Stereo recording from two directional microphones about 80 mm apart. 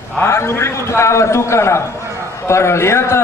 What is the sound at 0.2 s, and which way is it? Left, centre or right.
A man's voice, left.